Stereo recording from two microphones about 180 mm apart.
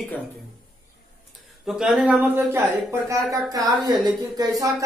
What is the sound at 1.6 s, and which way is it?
A man's voice, 5° right (ahead or behind).